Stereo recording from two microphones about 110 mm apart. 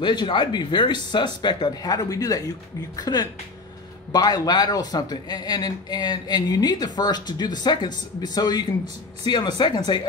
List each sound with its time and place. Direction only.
0.0 s speech: 45° left (ahead or behind)